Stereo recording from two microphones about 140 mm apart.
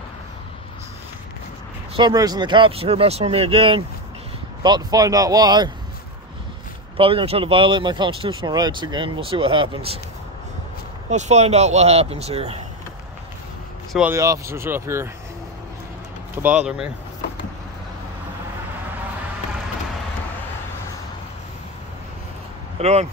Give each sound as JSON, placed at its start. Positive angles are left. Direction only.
{"t": 2.0, "sound": "speech", "side_deg": -30}
{"t": 4.6, "sound": "speech", "side_deg": -30}
{"t": 7.0, "sound": "speech", "side_deg": -40}
{"t": 11.1, "sound": "speech", "side_deg": -55}
{"t": 14.1, "sound": "speech", "side_deg": -20}
{"t": 16.4, "sound": "speech", "side_deg": -5}
{"t": 22.8, "sound": "speech", "side_deg": -50}